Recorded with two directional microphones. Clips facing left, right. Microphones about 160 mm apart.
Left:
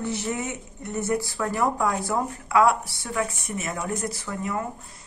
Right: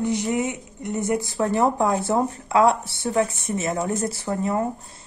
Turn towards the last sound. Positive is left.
turn(degrees=-30)  # may be behind; listen again after turning